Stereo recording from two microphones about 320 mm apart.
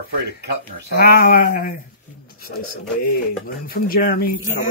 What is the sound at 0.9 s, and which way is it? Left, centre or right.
Speech, left.